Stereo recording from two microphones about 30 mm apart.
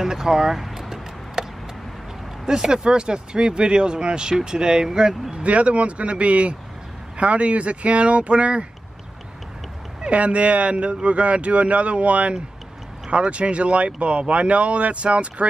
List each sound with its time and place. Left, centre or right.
0.0 s a sound: centre
2.4 s speech: right
5.3 s speech: right
10.0 s speech: right